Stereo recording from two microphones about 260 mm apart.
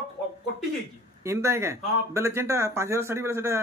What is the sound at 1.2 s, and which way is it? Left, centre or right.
Speech, centre.